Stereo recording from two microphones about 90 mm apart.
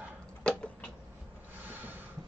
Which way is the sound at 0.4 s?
10° left (ahead or behind).